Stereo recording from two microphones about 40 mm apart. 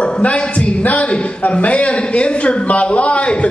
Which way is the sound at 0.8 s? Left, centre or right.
Left.